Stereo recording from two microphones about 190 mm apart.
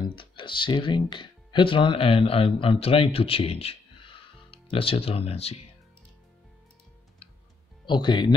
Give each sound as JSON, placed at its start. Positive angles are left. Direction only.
{"t": 0.0, "sound": "speech", "side_deg": 25}
{"t": 7.8, "sound": "speech", "side_deg": 25}